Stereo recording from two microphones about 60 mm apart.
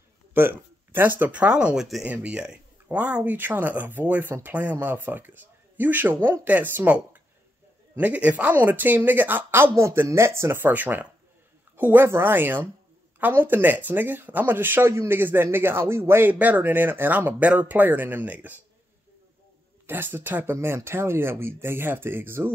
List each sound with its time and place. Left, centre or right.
0.3 s speech: right
3.3 s speech: right
10.7 s speech: right
16.3 s speech: right
16.6 s speech: right
19.9 s speech: right